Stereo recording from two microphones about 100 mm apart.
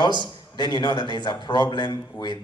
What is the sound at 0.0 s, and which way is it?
A man's voice, 50° left (ahead or behind).